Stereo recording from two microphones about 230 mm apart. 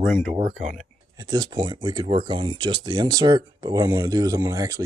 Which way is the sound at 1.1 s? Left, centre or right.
Centre.